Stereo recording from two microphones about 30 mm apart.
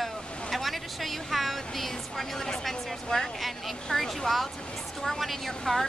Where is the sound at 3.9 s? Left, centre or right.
Centre.